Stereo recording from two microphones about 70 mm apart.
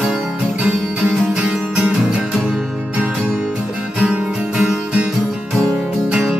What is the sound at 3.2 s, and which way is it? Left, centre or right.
Music, centre.